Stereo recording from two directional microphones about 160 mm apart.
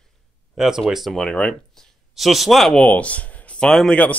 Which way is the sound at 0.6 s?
5° right (ahead or behind).